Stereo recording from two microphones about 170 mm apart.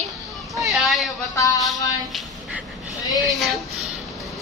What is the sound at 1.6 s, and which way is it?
Speech, centre (ahead or behind).